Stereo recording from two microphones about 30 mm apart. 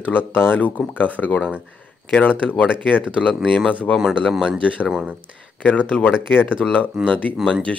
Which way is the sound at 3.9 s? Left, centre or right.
Left.